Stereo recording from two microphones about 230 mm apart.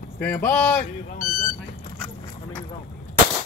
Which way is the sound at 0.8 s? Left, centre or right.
Left.